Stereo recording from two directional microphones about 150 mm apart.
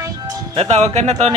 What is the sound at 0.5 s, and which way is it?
Speech, 45° right (ahead or behind).